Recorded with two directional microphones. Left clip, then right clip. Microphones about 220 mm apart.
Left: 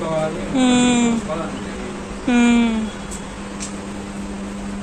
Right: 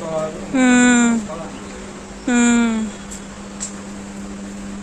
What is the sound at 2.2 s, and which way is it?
Speech, 30° right (ahead or behind).